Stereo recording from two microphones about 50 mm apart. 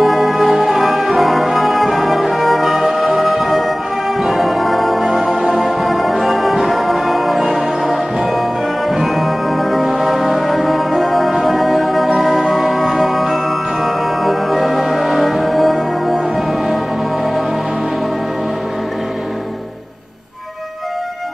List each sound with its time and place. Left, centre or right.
0.0 s music: centre